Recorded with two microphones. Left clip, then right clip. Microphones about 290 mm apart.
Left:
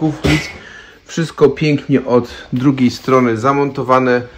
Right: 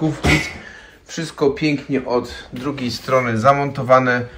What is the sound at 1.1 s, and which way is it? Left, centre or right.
Speech, left.